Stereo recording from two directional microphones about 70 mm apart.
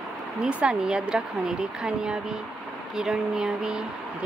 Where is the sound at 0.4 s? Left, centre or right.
Centre.